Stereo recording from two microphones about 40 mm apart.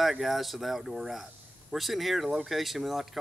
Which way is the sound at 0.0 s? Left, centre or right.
Centre.